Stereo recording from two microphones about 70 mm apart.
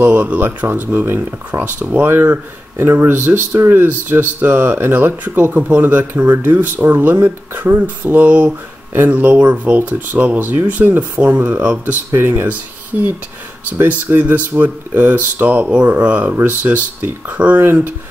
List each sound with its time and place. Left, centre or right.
0.0 s speech: right
13.7 s speech: right